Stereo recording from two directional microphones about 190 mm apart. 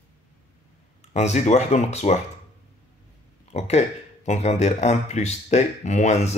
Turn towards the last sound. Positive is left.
turn(degrees=35)  # may be behind; listen again after turning